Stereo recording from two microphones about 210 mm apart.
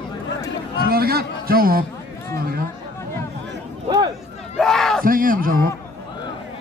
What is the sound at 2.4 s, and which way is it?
Chatter, 45° right (ahead or behind).